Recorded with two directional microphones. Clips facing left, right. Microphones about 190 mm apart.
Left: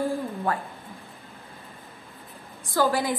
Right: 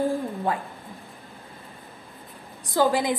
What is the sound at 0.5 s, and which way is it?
Speech, 15° right (ahead or behind).